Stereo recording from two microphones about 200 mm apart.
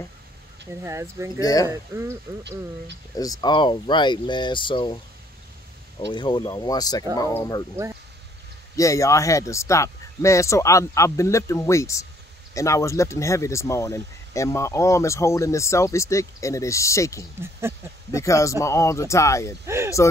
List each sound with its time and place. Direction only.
0.8 s speech: 15° right (ahead or behind)
1.4 s speech: 20° left (ahead or behind)
1.7 s speech: 15° right (ahead or behind)
3.2 s speech: 20° left (ahead or behind)
5.9 s speech: 25° left (ahead or behind)
8.7 s speech: 15° left (ahead or behind)
17.4 s speech: 10° right (ahead or behind)
18.1 s speech: 15° left (ahead or behind)
19.6 s speech: 15° right (ahead or behind)